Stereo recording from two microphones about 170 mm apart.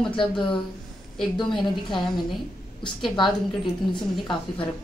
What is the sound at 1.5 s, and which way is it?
Speech, centre (ahead or behind).